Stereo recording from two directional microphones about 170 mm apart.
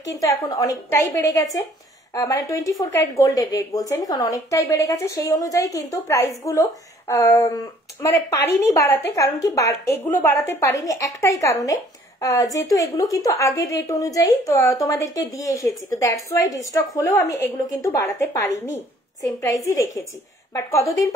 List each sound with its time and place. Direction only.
0.1 s a woman's voice: 20° left (ahead or behind)